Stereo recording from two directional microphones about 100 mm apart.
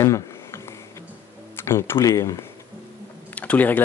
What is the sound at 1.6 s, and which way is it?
Speech, 25° left (ahead or behind).